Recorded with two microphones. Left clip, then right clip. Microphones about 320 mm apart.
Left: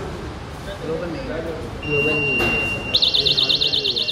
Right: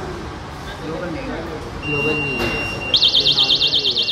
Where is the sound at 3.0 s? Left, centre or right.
Right.